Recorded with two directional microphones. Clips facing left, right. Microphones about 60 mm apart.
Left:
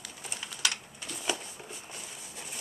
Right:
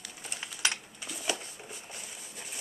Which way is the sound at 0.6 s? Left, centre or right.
Right.